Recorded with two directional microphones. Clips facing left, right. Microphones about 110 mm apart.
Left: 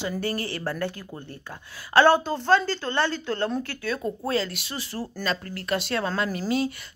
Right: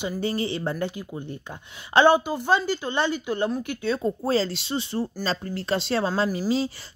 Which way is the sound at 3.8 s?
25° right (ahead or behind).